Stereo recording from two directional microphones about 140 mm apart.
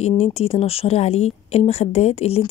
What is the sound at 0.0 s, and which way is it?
Speech, 45° left (ahead or behind).